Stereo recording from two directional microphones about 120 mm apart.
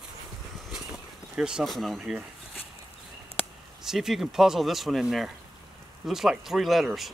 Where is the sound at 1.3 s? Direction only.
5° right (ahead or behind).